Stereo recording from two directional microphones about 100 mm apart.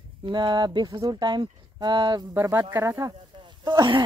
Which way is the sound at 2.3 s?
25° right (ahead or behind).